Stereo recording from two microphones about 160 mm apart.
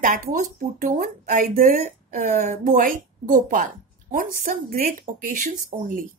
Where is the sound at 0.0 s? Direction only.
55° right (ahead or behind).